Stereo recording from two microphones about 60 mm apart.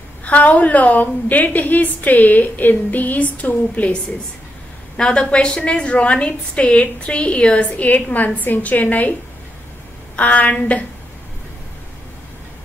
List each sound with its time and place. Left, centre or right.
0.2 s a woman's voice: left
10.1 s a woman's voice: left